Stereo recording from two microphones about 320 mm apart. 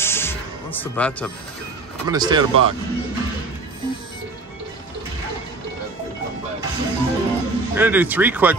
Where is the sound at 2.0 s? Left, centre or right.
Centre.